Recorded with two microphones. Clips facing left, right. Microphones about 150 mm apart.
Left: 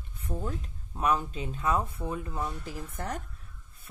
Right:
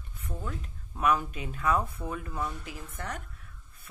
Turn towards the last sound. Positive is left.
turn(degrees=35)  # may be behind; listen again after turning